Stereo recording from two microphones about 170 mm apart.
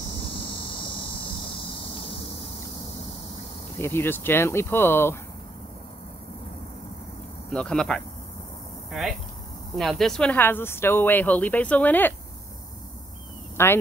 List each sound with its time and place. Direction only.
0.5 s cricket: 30° left (ahead or behind)
3.7 s speech: 10° left (ahead or behind)
7.5 s speech: 5° left (ahead or behind)
9.8 s speech: centre (ahead or behind)
13.6 s speech: 15° left (ahead or behind)